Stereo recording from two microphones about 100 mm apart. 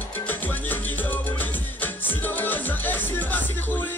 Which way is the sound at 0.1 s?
20° left (ahead or behind).